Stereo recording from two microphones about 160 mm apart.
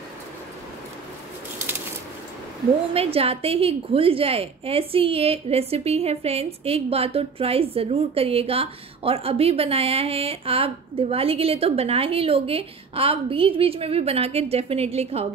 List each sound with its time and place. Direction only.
2.9 s a woman's voice: 40° right (ahead or behind)